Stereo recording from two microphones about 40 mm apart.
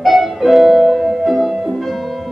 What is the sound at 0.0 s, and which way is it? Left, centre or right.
Music, centre.